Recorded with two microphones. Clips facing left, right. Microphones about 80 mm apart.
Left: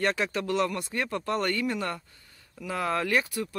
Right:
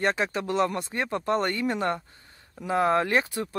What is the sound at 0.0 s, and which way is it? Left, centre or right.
Speech, right.